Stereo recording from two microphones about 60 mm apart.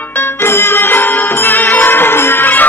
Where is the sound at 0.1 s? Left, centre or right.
Left.